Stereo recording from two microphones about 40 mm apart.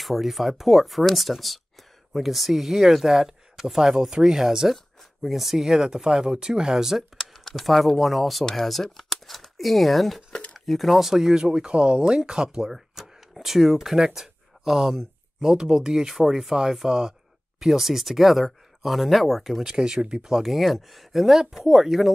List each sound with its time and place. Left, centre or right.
0.0 s speech: centre; by 12.7 s right
13.3 s speech: centre
19.6 s speech: centre